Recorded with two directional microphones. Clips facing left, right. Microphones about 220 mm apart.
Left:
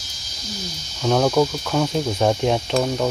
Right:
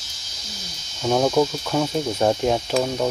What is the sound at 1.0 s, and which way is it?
Speech, 5° right (ahead or behind).